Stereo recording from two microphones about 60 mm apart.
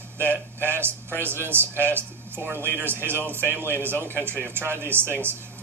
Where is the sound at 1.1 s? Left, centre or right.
Right.